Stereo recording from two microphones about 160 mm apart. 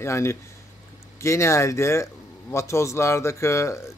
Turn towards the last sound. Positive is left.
turn(degrees=15)  # may be behind; listen again after turning